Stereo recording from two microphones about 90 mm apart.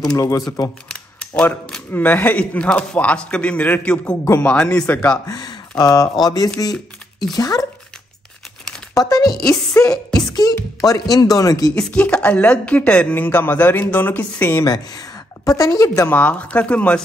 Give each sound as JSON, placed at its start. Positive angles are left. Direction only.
{"t": 0.0, "sound": "speech", "side_deg": 40}
{"t": 0.8, "sound": "camera", "side_deg": 10}
{"t": 1.9, "sound": "speech", "side_deg": 20}
{"t": 5.2, "sound": "speech", "side_deg": 50}
{"t": 6.7, "sound": "typing", "side_deg": 0}
{"t": 7.3, "sound": "speech", "side_deg": 45}
{"t": 8.6, "sound": "crumpling", "side_deg": 0}
{"t": 9.1, "sound": "chopping", "side_deg": 45}
{"t": 9.8, "sound": "music", "side_deg": 45}
{"t": 10.5, "sound": "speech", "side_deg": 40}
{"t": 11.7, "sound": "speech", "side_deg": 10}
{"t": 14.6, "sound": "speech", "side_deg": 45}
{"t": 16.1, "sound": "speech", "side_deg": 15}